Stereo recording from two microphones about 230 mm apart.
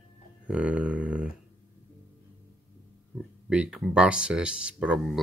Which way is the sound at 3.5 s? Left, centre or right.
Centre.